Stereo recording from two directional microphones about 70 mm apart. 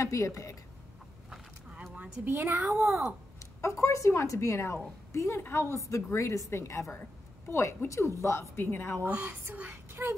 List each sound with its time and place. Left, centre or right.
0.0 s a woman's voice: left
2.0 s a woman's voice: right
3.6 s a woman's voice: left
9.2 s a woman's voice: right